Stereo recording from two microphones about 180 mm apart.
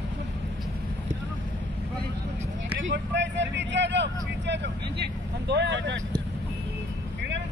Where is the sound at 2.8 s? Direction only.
85° right.